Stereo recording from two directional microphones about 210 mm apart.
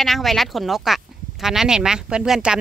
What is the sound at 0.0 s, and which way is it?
Speech, centre (ahead or behind).